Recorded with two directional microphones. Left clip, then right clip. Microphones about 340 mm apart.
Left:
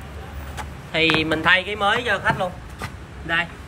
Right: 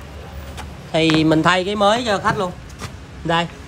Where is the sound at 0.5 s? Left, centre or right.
Centre.